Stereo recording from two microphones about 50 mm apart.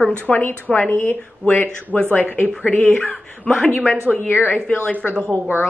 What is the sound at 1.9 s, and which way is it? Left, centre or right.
Speech, centre.